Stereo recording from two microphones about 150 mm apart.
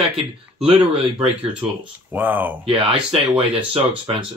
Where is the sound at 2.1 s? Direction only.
10° right (ahead or behind).